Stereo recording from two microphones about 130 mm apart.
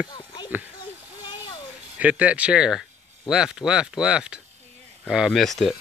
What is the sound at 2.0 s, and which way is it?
Speech, 10° right (ahead or behind).